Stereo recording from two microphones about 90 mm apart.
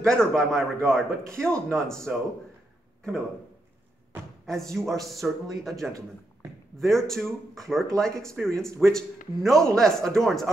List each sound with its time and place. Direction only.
0.0 s a man's voice: 10° left (ahead or behind)
4.5 s speech: 5° left (ahead or behind)